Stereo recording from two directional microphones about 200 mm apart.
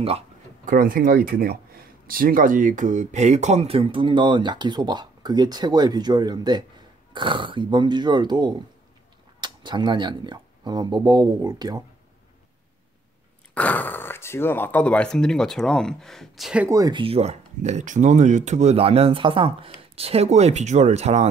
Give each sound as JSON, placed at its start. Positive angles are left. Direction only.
{"t": 0.7, "sound": "speech", "side_deg": -45}
{"t": 13.6, "sound": "speech", "side_deg": 10}
{"t": 16.6, "sound": "speech", "side_deg": -15}